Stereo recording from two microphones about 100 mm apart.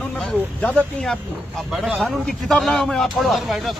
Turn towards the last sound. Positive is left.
turn(degrees=0)  # may be behind; listen again after turning